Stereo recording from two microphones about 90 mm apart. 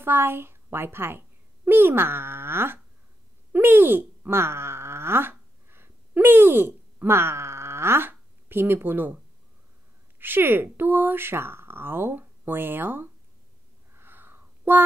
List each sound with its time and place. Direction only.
0.0 s a child's voice: 25° right (ahead or behind)
3.5 s groan: 25° right (ahead or behind)
10.1 s speech: 25° right (ahead or behind)
13.9 s a sound: 25° right (ahead or behind)